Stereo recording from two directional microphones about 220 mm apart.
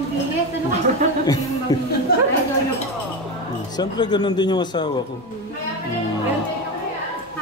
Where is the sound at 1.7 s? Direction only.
15° left (ahead or behind).